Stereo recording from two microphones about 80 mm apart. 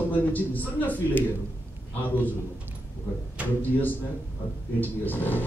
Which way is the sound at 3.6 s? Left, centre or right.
Left.